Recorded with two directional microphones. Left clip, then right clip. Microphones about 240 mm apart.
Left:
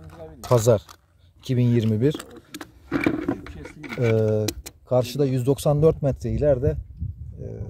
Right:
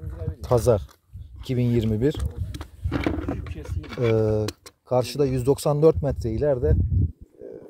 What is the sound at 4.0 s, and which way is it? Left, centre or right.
Speech, centre.